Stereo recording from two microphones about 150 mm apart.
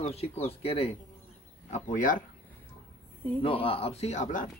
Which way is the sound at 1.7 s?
60° left (ahead or behind).